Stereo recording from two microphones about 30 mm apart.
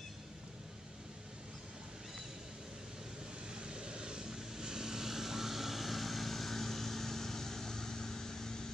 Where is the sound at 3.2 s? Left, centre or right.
Right.